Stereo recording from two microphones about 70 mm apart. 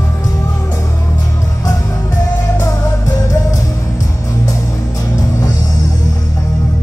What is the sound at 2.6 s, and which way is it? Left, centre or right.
Music, left.